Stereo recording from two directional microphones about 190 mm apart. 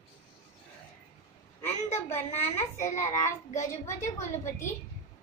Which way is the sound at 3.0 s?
15° left (ahead or behind).